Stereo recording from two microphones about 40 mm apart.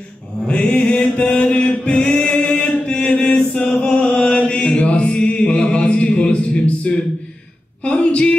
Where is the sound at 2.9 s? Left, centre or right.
Left.